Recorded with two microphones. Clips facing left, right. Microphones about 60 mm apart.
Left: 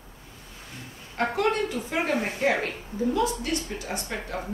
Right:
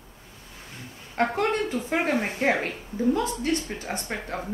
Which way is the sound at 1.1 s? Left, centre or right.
Right.